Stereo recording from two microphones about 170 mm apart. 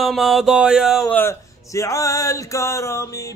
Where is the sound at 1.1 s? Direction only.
15° left (ahead or behind).